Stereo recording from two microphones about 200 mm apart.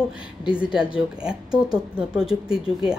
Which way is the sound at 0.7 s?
5° right (ahead or behind).